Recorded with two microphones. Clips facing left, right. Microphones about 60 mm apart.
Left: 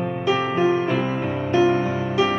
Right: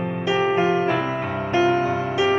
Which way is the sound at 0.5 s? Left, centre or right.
Right.